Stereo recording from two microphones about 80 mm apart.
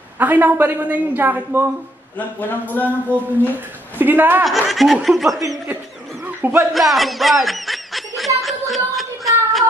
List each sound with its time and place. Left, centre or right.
0.2 s a woman's voice: right
2.1 s speech: left
4.0 s a woman's voice: right
4.5 s speech: centre
6.2 s a sound: right
6.7 s speech: centre
8.4 s a sound: centre